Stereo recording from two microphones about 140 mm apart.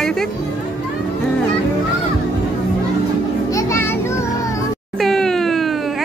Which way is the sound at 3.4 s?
20° left (ahead or behind).